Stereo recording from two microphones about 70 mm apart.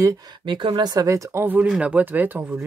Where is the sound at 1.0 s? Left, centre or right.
Right.